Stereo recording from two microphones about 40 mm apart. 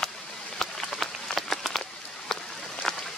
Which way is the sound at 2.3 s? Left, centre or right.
Centre.